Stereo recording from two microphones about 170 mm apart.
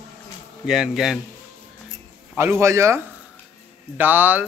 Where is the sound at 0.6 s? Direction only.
5° right (ahead or behind).